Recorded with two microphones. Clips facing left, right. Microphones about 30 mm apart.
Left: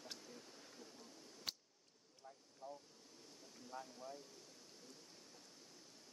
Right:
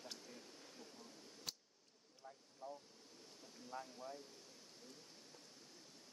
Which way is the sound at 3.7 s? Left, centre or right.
Right.